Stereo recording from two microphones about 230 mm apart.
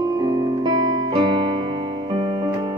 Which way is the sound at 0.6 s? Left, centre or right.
Centre.